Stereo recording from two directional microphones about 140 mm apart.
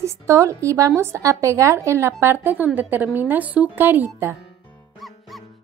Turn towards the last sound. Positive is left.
turn(degrees=-15)  # may be behind; listen again after turning